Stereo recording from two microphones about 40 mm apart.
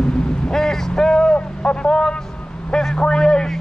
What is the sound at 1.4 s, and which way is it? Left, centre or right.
Speech, left.